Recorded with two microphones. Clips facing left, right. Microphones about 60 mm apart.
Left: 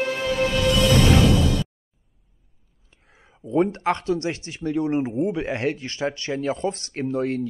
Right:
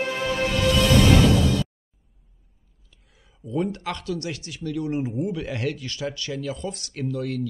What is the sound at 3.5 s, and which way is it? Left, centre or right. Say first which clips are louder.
Speech: left 6 dB; left.